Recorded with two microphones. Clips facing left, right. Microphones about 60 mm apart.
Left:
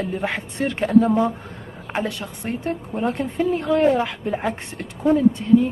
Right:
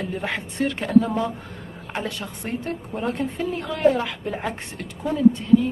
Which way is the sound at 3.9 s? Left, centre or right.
Centre.